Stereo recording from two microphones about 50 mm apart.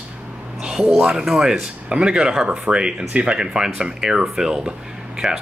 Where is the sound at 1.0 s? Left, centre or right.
Centre.